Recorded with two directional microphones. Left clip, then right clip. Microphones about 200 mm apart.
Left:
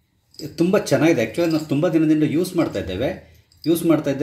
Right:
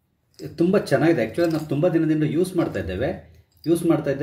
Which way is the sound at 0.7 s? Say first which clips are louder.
Left 2 dB; 25° left (ahead or behind).